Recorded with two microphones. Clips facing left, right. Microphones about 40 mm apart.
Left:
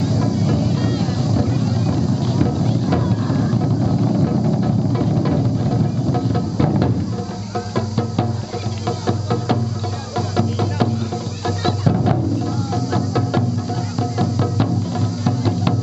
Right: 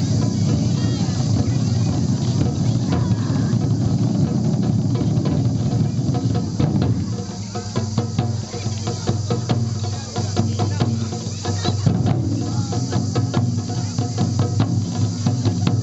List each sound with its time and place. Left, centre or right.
0.0 s vehicle: centre
3.0 s music: centre
8.8 s music: centre